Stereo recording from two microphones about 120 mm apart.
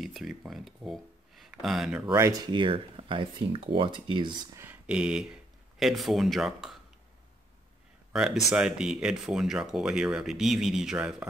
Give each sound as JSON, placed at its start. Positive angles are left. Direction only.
{"t": 0.0, "sound": "speech", "side_deg": 0}
{"t": 2.1, "sound": "speech", "side_deg": -25}
{"t": 2.5, "sound": "speech", "side_deg": -45}
{"t": 4.8, "sound": "speech", "side_deg": -5}
{"t": 8.1, "sound": "speech", "side_deg": -5}